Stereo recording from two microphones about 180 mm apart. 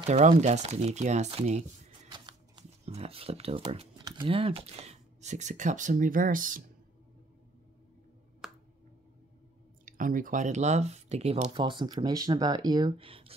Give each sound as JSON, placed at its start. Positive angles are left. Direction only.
{"t": 0.1, "sound": "speech", "side_deg": -40}
{"t": 2.1, "sound": "shuffling cards", "side_deg": -25}
{"t": 4.0, "sound": "speech", "side_deg": -30}
{"t": 8.4, "sound": "a sound", "side_deg": -5}
{"t": 9.8, "sound": "speech", "side_deg": -50}